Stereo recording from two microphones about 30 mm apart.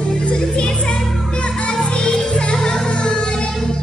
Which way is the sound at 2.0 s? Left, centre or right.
Left.